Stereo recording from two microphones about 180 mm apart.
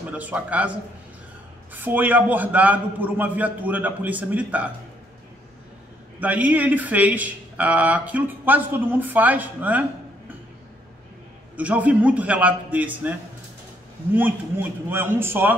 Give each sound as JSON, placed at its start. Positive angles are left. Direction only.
{"t": 0.2, "sound": "speech", "side_deg": -10}
{"t": 1.7, "sound": "speech", "side_deg": -10}
{"t": 6.1, "sound": "speech", "side_deg": -10}
{"t": 11.5, "sound": "speech", "side_deg": -10}
{"t": 14.1, "sound": "speech", "side_deg": -10}